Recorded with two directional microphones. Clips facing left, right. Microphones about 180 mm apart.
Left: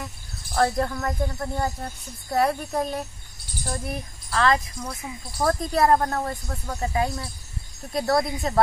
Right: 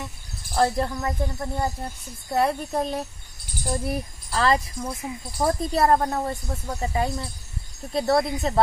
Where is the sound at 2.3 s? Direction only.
Centre (ahead or behind).